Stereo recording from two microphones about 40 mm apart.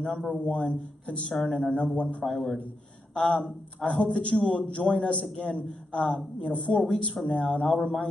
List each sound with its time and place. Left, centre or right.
0.0 s a woman's voice: left
2.2 s a man's voice: centre
3.2 s a woman's voice: left